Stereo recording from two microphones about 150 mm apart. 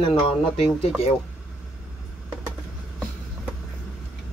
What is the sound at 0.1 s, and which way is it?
Speech, 40° left (ahead or behind).